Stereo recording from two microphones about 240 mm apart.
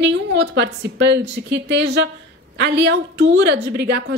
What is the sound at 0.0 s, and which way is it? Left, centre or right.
A woman's voice, right.